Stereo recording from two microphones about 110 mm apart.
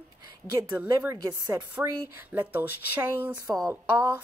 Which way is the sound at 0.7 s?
20° right (ahead or behind).